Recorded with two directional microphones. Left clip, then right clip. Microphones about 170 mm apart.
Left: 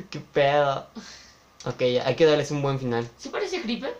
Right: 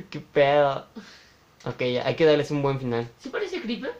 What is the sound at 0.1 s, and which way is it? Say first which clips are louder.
Speech: right 1 dB; 25° right (ahead or behind).